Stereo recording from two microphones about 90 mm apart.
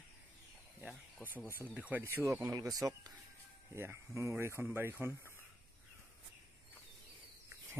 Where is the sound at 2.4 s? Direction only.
45° right (ahead or behind).